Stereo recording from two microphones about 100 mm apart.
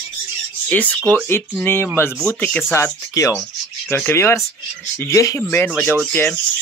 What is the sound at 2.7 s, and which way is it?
Speech, 30° left (ahead or behind).